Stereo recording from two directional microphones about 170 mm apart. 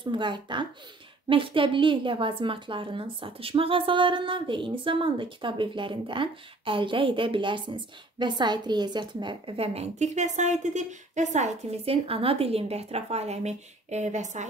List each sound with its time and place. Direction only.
0.0 s a woman's voice: 25° right (ahead or behind); by 14.4 s 45° right (ahead or behind)